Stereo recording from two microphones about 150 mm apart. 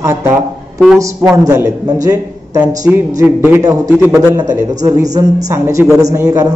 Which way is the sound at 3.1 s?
15° right (ahead or behind).